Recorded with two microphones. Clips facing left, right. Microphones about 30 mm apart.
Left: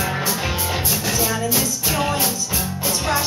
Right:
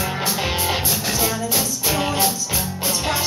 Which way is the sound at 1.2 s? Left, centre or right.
Centre.